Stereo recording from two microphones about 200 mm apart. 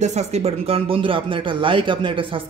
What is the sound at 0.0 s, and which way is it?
Speech, 35° right (ahead or behind).